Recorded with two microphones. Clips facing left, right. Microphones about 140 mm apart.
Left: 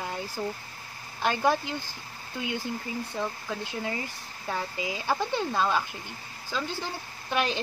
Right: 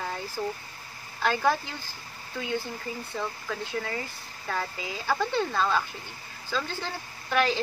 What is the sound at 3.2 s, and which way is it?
Speech, 15° left (ahead or behind).